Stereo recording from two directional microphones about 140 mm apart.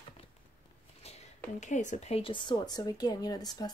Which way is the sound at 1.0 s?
50° left (ahead or behind).